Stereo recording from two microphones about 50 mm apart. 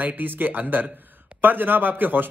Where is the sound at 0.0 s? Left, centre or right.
Right.